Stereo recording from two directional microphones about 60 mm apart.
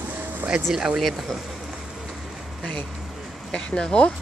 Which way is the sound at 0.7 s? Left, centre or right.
Centre.